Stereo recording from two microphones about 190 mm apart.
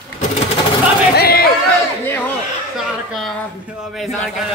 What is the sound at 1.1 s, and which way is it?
Chatter, 55° left (ahead or behind).